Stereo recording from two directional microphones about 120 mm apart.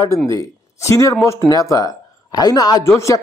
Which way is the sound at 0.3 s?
25° left (ahead or behind).